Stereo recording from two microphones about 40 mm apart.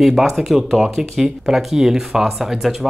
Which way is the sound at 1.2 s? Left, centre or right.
Centre.